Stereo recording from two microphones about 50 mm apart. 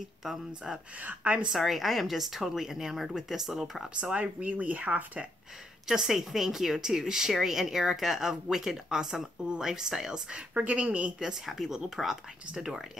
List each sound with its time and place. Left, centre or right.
0.2 s speech: centre
1.0 s speech: right
1.5 s speech: centre
4.0 s speech: right
5.9 s speech: centre
10.3 s speech: right
11.1 s speech: centre